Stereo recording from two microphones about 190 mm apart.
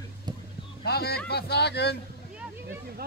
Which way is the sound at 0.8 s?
55° left (ahead or behind).